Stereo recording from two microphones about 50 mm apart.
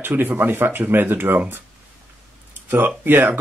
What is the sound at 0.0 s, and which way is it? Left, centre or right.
Speech, right.